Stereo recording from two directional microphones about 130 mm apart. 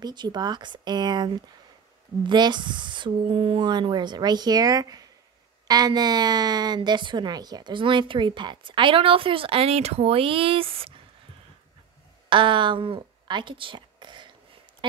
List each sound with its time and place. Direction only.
0.0 s a woman's voice: 35° right (ahead or behind)
12.3 s speech: 40° right (ahead or behind)